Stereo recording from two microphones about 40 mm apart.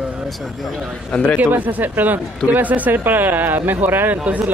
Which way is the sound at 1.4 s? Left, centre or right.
Right.